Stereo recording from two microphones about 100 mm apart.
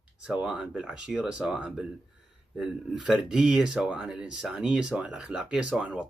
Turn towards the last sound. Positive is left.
turn(degrees=-10)  # may be behind; listen again after turning